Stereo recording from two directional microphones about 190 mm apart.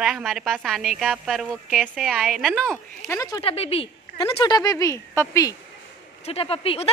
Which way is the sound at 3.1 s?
20° left (ahead or behind).